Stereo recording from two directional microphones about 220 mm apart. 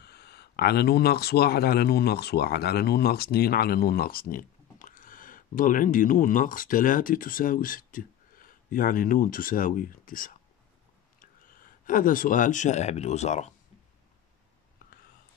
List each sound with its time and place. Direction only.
0.0 s speech: 45° left (ahead or behind); by 13.5 s 30° left (ahead or behind)